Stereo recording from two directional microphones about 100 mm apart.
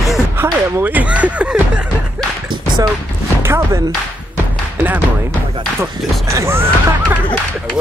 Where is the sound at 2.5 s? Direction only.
50° right (ahead or behind).